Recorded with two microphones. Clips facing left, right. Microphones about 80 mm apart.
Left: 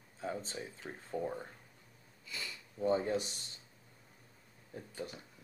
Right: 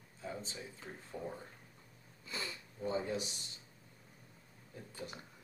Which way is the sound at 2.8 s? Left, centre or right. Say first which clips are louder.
Left 5 dB; left.